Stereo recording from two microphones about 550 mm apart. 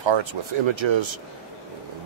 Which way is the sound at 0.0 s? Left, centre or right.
Right.